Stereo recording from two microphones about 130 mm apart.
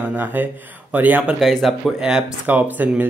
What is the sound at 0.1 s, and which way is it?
Speech, 15° right (ahead or behind).